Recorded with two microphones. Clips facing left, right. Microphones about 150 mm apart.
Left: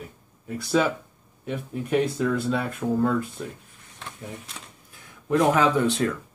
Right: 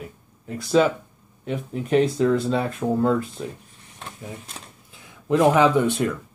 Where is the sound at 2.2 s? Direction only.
25° right (ahead or behind).